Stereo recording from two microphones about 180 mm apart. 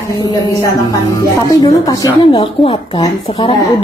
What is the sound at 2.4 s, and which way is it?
A woman's voice, 30° left (ahead or behind).